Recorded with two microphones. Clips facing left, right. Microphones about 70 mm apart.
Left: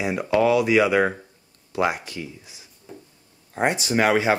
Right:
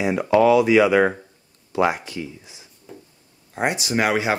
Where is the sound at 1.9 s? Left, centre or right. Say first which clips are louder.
Right 2 dB; right.